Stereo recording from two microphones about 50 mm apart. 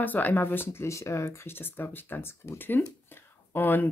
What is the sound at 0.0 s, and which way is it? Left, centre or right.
Speech, left.